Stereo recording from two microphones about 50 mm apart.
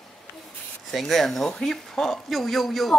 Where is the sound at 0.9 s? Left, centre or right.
Centre.